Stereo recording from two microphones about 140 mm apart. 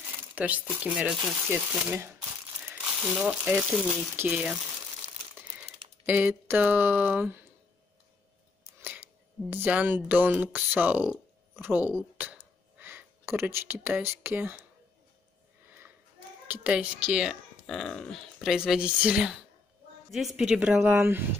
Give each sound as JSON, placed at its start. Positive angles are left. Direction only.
{"t": 0.4, "sound": "speech", "side_deg": -10}
{"t": 5.6, "sound": "speech", "side_deg": -10}
{"t": 9.5, "sound": "speech", "side_deg": -10}
{"t": 12.2, "sound": "a sound", "side_deg": -15}
{"t": 16.4, "sound": "a woman's voice", "side_deg": -10}
{"t": 17.6, "sound": "speech", "side_deg": 5}
{"t": 20.8, "sound": "speech", "side_deg": -15}